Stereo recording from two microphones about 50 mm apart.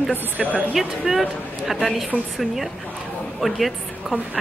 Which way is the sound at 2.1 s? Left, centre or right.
Right.